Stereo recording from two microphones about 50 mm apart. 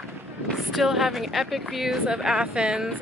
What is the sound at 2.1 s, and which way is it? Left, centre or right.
Speech, centre.